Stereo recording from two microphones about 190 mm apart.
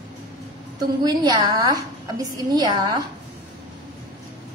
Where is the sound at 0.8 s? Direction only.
20° right (ahead or behind).